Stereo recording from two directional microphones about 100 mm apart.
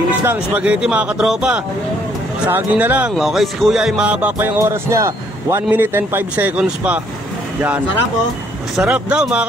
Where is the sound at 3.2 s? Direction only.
Centre (ahead or behind).